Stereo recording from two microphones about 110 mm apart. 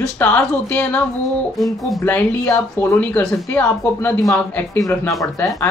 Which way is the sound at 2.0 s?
20° left (ahead or behind).